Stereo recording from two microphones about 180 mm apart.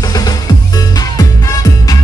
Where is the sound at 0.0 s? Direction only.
20° left (ahead or behind).